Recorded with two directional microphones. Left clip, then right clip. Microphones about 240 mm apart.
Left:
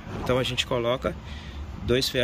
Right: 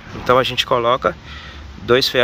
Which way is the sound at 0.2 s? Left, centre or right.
Centre.